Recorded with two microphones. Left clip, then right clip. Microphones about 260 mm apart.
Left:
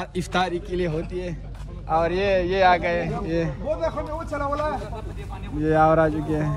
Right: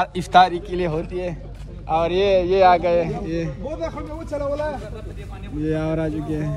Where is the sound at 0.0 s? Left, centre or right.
Centre.